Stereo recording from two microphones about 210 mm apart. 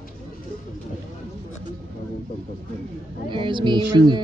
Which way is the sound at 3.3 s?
25° right (ahead or behind).